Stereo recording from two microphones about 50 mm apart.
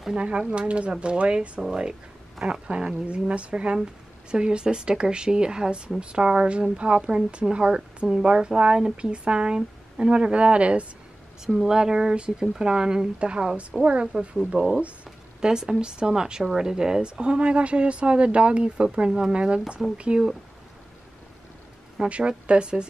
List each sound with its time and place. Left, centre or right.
0.2 s a woman's voice: right
11.4 s a woman's voice: centre
22.0 s a woman's voice: centre